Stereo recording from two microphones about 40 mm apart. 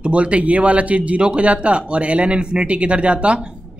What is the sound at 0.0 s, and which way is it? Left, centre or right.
Speech, right.